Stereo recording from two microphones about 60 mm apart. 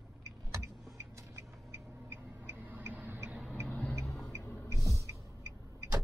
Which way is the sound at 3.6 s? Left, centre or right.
Centre.